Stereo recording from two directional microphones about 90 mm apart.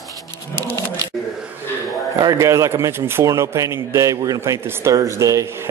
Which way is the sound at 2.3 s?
35° right (ahead or behind).